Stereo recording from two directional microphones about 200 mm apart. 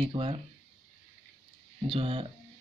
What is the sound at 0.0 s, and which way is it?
Speech, 25° right (ahead or behind).